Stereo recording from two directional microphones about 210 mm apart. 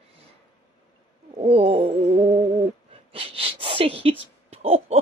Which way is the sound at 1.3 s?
25° right (ahead or behind).